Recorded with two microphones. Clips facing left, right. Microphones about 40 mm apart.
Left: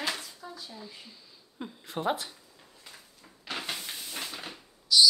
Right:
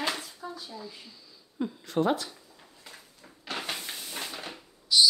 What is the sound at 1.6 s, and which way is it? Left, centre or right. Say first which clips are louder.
Speech: right 7 dB; centre.